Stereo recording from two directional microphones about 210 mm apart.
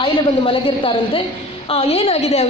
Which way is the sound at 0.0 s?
25° left (ahead or behind).